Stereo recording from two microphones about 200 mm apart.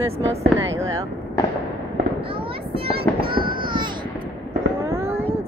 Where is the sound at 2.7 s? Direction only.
25° right (ahead or behind).